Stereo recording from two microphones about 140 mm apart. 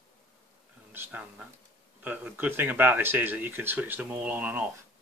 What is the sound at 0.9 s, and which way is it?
Speech, 10° right (ahead or behind).